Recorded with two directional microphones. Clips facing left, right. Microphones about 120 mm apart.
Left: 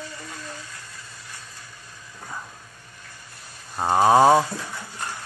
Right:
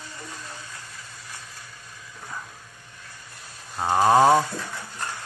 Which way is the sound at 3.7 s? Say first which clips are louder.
Left 1 dB; 10° left (ahead or behind).